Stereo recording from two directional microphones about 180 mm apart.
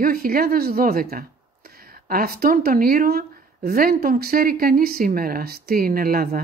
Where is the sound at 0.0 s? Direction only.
55° right (ahead or behind).